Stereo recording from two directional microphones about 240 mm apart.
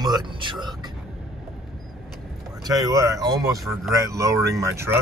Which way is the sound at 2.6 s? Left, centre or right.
Centre.